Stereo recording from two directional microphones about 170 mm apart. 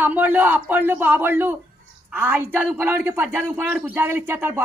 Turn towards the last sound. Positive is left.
turn(degrees=-15)  # may be behind; listen again after turning